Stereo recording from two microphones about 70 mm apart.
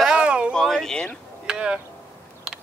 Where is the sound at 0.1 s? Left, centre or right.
Centre.